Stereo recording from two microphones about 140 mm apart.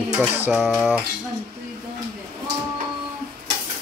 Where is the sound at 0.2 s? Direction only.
10° right (ahead or behind).